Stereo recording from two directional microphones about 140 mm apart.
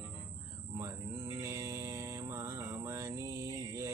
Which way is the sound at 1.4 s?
20° right (ahead or behind).